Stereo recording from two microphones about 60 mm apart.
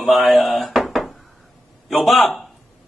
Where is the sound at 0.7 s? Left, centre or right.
Centre.